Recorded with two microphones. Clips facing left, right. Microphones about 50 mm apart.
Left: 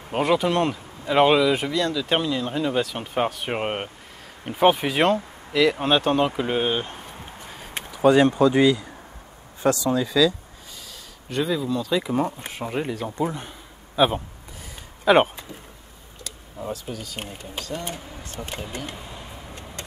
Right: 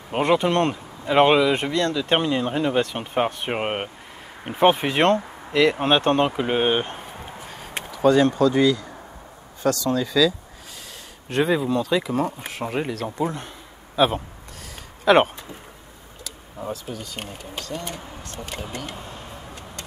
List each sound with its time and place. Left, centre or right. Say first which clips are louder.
0.2 s speech: right 1 dB; centre
1.5 s speech: right 1 dB; centre
2.0 s speech: right 2 dB; centre
7.3 s a sound: right 2 dB; centre
7.9 s speech: left 1 dB; centre
9.8 s speech: right 1 dB; centre
11.3 s speech: right 3 dB; right
12.0 s speech: even; centre
16.3 s speech: even; centre
18.2 s speech: left 1 dB; centre